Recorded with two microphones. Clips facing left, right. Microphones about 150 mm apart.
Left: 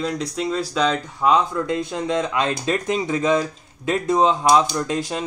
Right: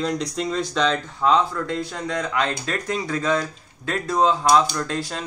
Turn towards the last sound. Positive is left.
turn(degrees=20)  # may be behind; listen again after turning